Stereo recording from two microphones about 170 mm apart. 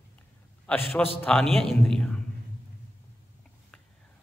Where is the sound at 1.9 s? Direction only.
5° left (ahead or behind).